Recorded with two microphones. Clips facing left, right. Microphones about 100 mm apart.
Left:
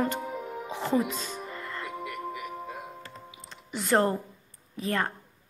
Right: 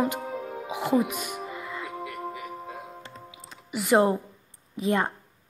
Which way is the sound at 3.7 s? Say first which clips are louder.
Right 3 dB; 10° right (ahead or behind).